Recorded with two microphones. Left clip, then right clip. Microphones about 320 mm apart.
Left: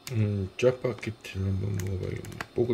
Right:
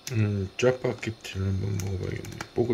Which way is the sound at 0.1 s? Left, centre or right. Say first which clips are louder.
Right 2 dB; centre.